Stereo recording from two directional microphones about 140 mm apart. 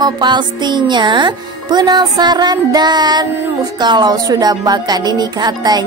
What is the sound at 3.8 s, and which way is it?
Music, 30° right (ahead or behind).